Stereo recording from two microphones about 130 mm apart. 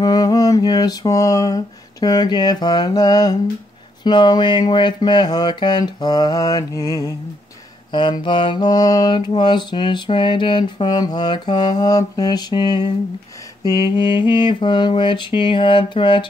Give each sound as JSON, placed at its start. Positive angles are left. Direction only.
{"t": 0.0, "sound": "mantra", "side_deg": 30}